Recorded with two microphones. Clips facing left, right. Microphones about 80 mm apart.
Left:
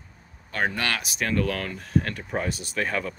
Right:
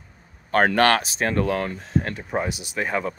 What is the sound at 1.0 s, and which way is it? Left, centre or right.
Speech, right.